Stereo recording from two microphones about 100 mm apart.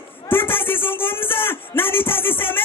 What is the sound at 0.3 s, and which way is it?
A man's voice, 20° left (ahead or behind).